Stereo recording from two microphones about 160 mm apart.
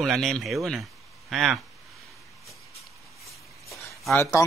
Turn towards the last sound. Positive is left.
turn(degrees=15)  # may be behind; listen again after turning